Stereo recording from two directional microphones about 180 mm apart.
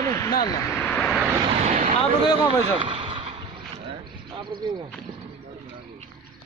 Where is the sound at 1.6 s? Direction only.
40° right (ahead or behind).